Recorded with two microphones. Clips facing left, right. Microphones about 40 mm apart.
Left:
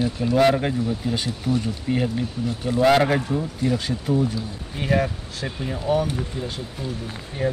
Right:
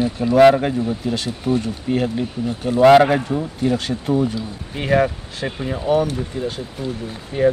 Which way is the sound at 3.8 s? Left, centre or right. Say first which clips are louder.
Right 3 dB; right.